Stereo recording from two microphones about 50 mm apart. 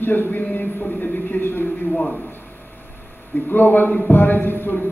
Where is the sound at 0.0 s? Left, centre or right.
Left.